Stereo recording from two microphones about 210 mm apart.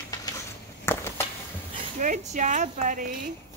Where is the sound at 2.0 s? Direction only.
35° right (ahead or behind).